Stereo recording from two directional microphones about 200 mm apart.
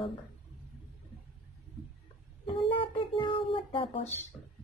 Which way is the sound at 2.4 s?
25° left (ahead or behind).